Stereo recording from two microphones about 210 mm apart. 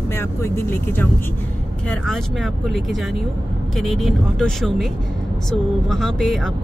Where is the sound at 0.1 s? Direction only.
10° left (ahead or behind).